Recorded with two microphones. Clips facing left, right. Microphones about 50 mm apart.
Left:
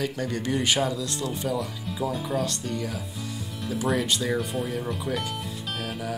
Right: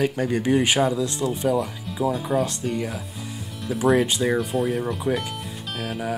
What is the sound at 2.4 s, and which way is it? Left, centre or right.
Speech, centre.